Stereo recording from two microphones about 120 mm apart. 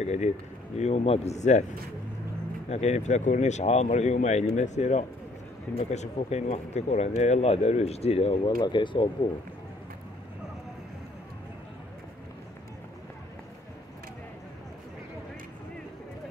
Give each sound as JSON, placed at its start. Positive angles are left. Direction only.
{"t": 0.0, "sound": "speech", "side_deg": 65}
{"t": 2.7, "sound": "speech", "side_deg": 70}
{"t": 8.5, "sound": "speech", "side_deg": 40}